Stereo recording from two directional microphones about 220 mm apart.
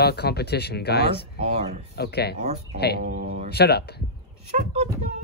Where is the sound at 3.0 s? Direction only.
35° right (ahead or behind).